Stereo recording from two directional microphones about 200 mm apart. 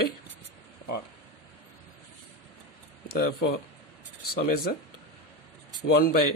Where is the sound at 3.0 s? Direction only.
50° left (ahead or behind).